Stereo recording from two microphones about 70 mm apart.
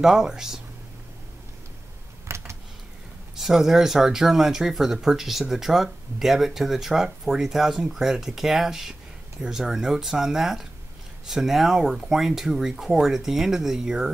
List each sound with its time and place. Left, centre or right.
0.0 s speech: centre
2.2 s a sound: right
3.3 s speech: centre